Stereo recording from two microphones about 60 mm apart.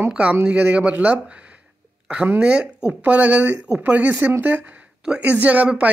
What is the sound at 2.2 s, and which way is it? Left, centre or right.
Speech, right.